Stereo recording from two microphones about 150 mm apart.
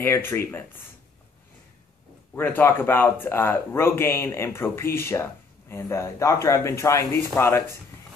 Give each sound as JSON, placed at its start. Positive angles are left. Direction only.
{"t": 0.0, "sound": "speech", "side_deg": 15}
{"t": 2.3, "sound": "speech", "side_deg": 15}